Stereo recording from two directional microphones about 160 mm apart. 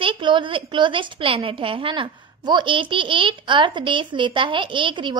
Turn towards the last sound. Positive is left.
turn(degrees=-30)  # may be behind; listen again after turning